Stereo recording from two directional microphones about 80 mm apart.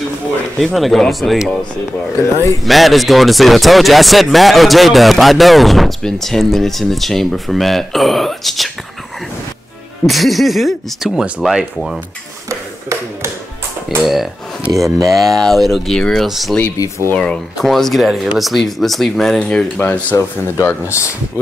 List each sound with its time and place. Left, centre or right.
0.7 s speech: centre
2.2 s speech: left
2.6 s speech: centre
10.0 s speech: centre
13.8 s speech: centre
14.7 s speech: right
15.0 s speech: centre
17.1 s speech: centre
17.6 s speech: centre